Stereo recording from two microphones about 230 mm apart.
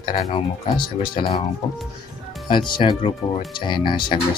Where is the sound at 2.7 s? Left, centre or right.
Left.